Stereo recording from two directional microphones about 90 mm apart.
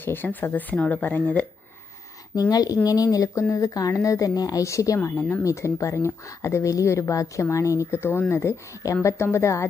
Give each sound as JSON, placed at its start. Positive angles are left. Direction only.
{"t": 0.0, "sound": "speech", "side_deg": 20}
{"t": 2.3, "sound": "speech", "side_deg": 45}